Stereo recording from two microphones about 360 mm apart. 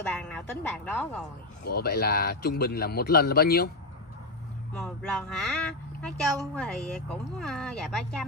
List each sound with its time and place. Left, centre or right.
0.1 s a sound: centre
0.8 s a woman's voice: centre
1.7 s speech: left
4.7 s a woman's voice: centre